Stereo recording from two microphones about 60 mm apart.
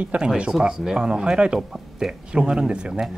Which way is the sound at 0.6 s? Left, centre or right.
Centre.